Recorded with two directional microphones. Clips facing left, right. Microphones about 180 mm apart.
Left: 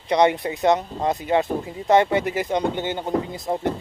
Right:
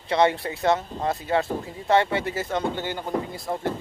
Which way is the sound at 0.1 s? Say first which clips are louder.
Left 3 dB; 20° left (ahead or behind).